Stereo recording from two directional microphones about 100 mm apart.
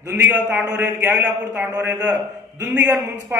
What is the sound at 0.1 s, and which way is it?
A man's voice, 20° right (ahead or behind).